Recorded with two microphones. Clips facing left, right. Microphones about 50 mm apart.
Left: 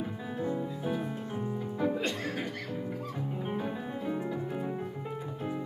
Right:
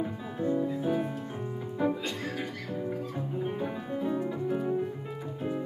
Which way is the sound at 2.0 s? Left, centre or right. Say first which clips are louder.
Left 1 dB; left.